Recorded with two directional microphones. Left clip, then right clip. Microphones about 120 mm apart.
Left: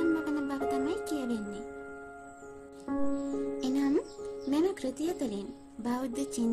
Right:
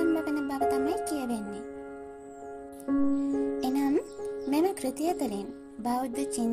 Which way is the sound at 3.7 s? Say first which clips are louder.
Even; 70° left (ahead or behind).